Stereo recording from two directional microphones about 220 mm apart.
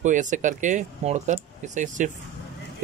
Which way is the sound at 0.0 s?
35° right (ahead or behind).